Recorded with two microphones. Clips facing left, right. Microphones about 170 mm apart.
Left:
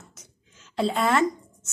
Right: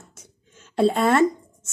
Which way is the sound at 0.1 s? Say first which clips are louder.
Right 4 dB; 55° right (ahead or behind).